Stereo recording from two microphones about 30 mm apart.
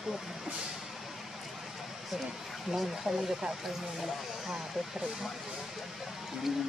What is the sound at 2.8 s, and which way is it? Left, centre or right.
Speech, centre.